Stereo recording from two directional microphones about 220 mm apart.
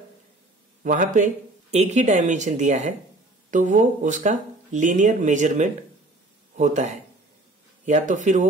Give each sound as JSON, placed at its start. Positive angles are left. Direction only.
{"t": 0.8, "sound": "speech", "side_deg": -35}